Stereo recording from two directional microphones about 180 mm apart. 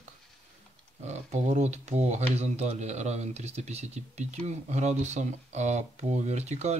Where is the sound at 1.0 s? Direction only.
40° right (ahead or behind).